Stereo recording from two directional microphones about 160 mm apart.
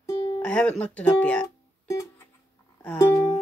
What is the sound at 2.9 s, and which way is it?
Music, 20° left (ahead or behind).